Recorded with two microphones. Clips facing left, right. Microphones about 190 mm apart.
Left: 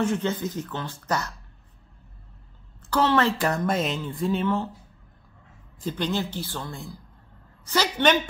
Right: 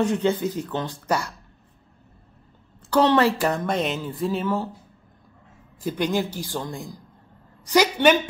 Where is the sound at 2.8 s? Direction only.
15° right (ahead or behind).